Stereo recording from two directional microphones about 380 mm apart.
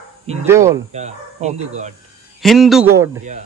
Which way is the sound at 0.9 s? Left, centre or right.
Centre.